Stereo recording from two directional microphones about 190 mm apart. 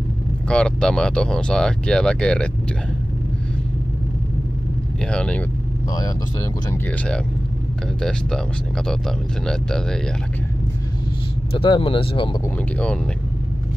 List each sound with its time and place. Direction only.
0.5 s speech: 5° left (ahead or behind)
5.1 s speech: 5° left (ahead or behind)
5.9 s speech: 20° left (ahead or behind)
8.0 s speech: 5° left (ahead or behind)
9.5 s speech: 5° left (ahead or behind)
11.5 s speech: 25° left (ahead or behind)
12.7 s speech: 5° left (ahead or behind)